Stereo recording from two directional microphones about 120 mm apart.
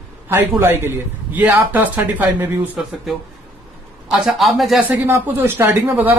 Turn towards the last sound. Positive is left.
turn(degrees=-15)  # may be behind; listen again after turning